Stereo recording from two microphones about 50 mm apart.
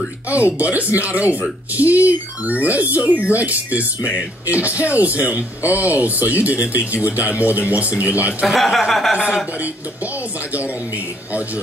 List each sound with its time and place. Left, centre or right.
0.3 s speech: right
8.5 s speech: centre